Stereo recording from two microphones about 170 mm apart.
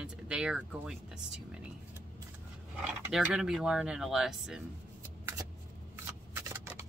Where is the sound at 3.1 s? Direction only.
5° right (ahead or behind).